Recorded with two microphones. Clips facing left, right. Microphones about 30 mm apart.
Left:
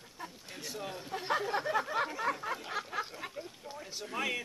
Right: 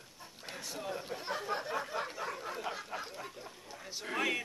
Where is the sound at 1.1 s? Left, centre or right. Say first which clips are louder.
Left 7 dB; left.